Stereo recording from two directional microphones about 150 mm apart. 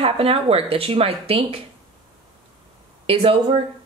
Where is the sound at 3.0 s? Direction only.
40° right (ahead or behind).